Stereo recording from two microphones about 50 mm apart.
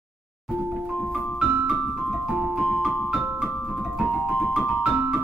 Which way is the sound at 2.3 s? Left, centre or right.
Centre.